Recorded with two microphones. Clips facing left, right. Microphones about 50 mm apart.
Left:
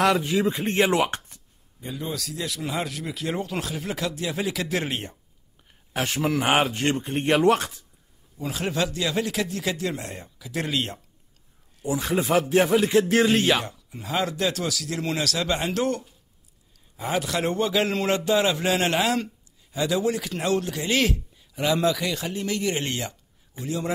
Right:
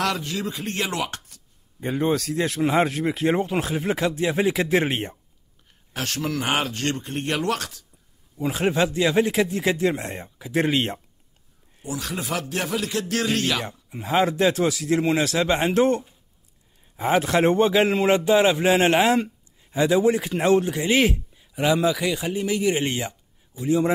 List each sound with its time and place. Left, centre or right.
0.0 s speech: centre
1.8 s speech: right
5.9 s speech: centre
8.4 s speech: right
11.9 s speech: left
13.7 s speech: right
17.9 s a man's voice: centre